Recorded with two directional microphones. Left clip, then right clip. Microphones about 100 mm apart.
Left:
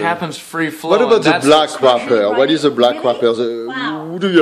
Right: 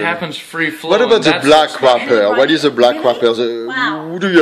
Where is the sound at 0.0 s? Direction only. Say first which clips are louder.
Even; 30° left (ahead or behind).